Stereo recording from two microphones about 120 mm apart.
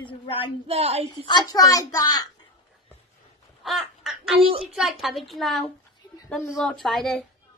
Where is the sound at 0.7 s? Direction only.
60° right (ahead or behind).